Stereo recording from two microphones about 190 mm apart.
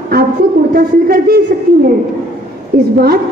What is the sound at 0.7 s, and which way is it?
Speech, 50° right (ahead or behind).